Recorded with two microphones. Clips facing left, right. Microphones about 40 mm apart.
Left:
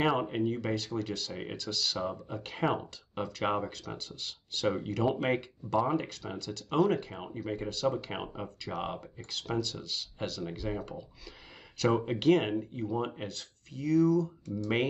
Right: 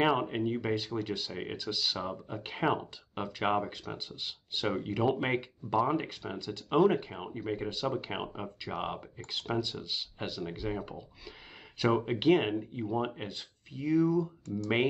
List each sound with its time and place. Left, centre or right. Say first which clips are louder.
0.0 s speech: even; centre